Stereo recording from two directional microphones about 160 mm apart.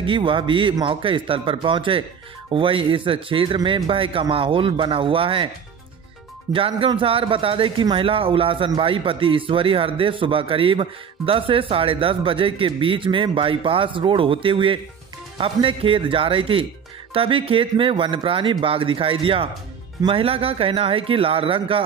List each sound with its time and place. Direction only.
0.0 s speech: 30° right (ahead or behind)
6.5 s speech: 35° right (ahead or behind)